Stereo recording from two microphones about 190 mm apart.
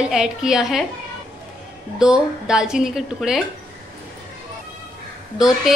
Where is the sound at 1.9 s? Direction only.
5° right (ahead or behind).